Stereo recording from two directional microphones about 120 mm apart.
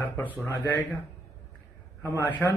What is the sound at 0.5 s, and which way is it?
Speech, 15° left (ahead or behind).